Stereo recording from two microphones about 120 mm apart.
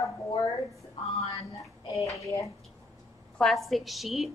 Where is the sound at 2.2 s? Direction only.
25° left (ahead or behind).